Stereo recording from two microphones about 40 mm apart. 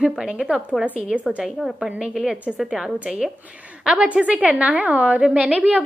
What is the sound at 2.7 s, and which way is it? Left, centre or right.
Speech, centre.